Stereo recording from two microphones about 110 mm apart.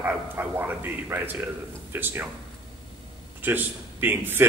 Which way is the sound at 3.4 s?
15° right (ahead or behind).